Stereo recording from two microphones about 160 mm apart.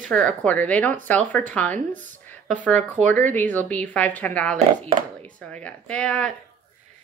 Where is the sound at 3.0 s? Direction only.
45° right (ahead or behind).